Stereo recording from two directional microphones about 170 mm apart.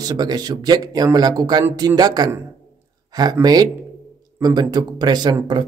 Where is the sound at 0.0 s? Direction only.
25° right (ahead or behind).